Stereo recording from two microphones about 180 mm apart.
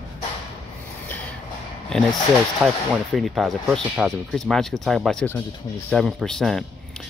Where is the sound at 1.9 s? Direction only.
Centre (ahead or behind).